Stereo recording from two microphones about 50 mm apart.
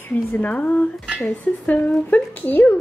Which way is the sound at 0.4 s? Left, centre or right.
Left.